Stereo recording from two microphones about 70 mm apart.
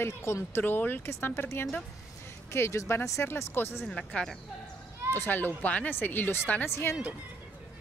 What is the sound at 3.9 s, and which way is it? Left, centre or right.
Speech, centre.